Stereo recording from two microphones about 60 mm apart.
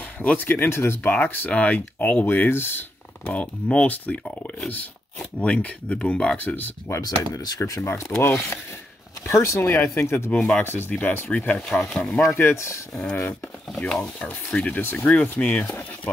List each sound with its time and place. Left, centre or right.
0.2 s speech: left
1.1 s speech: left
2.2 s speech: left
3.3 s speech: left
6.3 s speech: left
7.0 s speech: left
7.8 s speech: left
9.9 s speech: left
10.9 s speech: left
12.3 s speech: left
12.9 s speech: centre
14.7 s speech: left
15.0 s speech: left